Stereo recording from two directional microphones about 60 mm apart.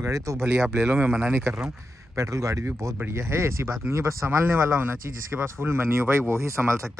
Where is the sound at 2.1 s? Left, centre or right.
Right.